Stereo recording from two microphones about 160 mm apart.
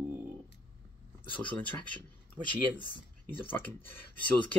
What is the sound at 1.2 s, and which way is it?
Speech, 30° left (ahead or behind).